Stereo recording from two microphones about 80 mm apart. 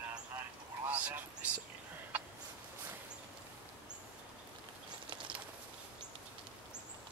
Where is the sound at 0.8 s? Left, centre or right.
Right.